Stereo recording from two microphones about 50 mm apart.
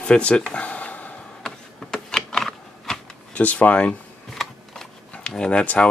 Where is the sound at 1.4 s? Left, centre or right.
Centre.